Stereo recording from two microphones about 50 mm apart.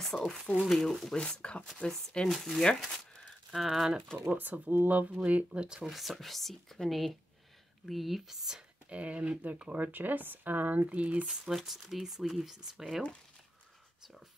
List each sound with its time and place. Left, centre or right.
0.0 s speech: centre
1.1 s speech: left
2.2 s speech: centre
4.3 s speech: right; by 5.9 s centre
5.9 s speech: centre
8.8 s speech: right
9.7 s speech: right
11.2 s speech: centre